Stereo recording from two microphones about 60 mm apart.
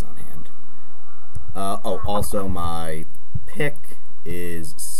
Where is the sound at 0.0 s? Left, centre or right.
Centre.